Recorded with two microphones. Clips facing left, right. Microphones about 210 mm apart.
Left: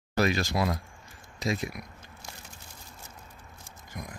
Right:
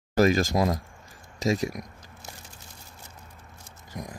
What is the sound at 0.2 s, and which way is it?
Speech, 45° right (ahead or behind).